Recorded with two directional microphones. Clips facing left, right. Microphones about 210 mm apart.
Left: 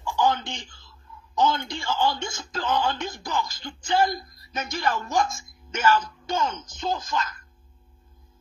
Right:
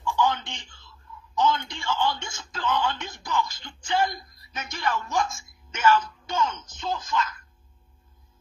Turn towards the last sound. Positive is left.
turn(degrees=40)  # may be behind; listen again after turning